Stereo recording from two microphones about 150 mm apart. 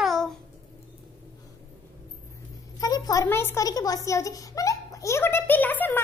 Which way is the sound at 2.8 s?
25° left (ahead or behind).